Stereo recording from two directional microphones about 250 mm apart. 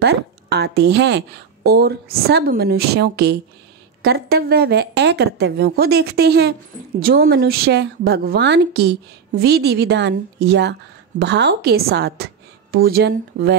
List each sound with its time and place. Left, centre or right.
0.0 s a woman's voice: right